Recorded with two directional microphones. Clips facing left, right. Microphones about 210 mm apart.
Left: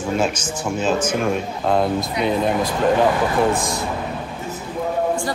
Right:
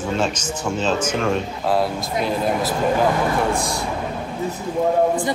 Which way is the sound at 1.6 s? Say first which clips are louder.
Left 3 dB; 5° right (ahead or behind).